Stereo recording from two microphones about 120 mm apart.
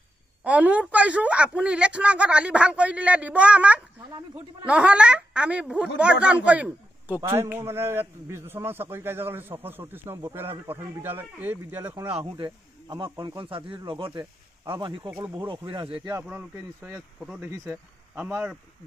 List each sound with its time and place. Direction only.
0.4 s a man's voice: 10° right (ahead or behind)
12.2 s speech: 50° right (ahead or behind)
12.4 s speech: 35° right (ahead or behind)
16.3 s speech: 20° right (ahead or behind)
18.1 s speech: 15° right (ahead or behind)